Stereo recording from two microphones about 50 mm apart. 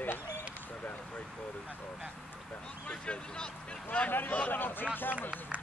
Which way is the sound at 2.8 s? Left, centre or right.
Left.